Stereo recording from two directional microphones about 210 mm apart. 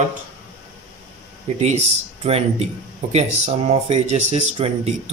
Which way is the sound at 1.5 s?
35° right (ahead or behind).